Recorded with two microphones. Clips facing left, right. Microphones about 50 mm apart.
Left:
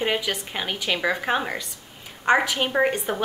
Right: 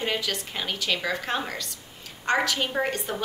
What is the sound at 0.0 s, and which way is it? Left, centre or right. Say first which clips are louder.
A woman's voice: left 4 dB; left.